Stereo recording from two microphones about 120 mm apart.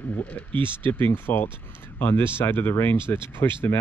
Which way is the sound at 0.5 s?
45° right (ahead or behind).